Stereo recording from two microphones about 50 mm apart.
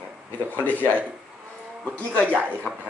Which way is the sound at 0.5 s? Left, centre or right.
Left.